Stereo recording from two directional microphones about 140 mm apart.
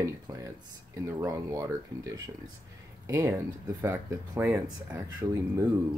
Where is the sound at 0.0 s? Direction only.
25° right (ahead or behind).